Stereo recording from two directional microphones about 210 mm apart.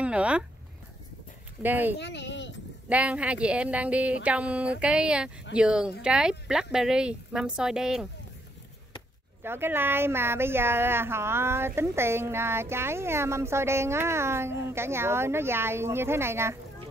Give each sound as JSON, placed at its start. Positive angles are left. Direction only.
{"t": 0.0, "sound": "a sound", "side_deg": -5}
{"t": 1.6, "sound": "speech", "side_deg": -10}
{"t": 2.0, "sound": "speech", "side_deg": 55}
{"t": 2.9, "sound": "speech", "side_deg": -5}
{"t": 9.4, "sound": "speech", "side_deg": -10}